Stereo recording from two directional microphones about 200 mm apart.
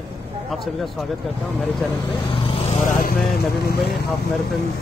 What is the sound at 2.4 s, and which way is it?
Vehicle, 35° left (ahead or behind).